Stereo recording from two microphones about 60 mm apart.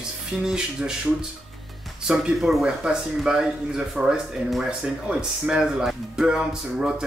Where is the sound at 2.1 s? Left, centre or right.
Centre.